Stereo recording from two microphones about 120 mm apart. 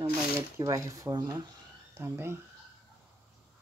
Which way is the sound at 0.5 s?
25° right (ahead or behind).